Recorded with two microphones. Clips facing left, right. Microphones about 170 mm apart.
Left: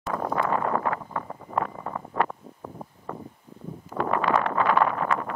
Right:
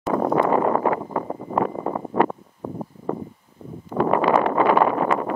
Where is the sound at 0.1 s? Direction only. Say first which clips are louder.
Right 7 dB; 25° right (ahead or behind).